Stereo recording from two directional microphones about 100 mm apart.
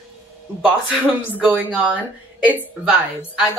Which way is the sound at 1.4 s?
15° right (ahead or behind).